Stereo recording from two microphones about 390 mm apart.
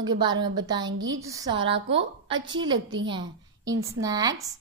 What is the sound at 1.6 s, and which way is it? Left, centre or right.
Speech, right.